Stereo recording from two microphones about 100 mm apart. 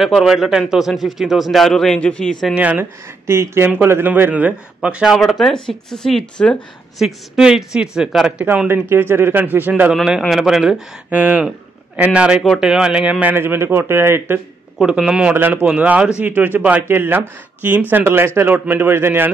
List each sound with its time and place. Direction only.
0.0 s a man's voice: 5° right (ahead or behind)
2.5 s speech: 15° right (ahead or behind)
5.1 s a man's voice: centre (ahead or behind)
8.6 s speech: 20° right (ahead or behind)
9.9 s a man's voice: 5° right (ahead or behind)
11.1 s speech: 15° right (ahead or behind)
14.8 s speech: 5° right (ahead or behind); by 19.3 s 20° right (ahead or behind)